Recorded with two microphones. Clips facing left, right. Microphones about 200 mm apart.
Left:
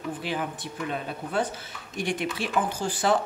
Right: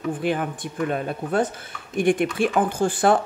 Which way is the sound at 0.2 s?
55° right (ahead or behind).